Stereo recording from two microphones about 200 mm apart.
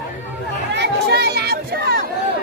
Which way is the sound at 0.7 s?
55° right (ahead or behind).